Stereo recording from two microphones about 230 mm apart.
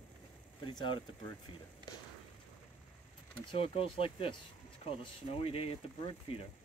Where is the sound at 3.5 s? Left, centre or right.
Left.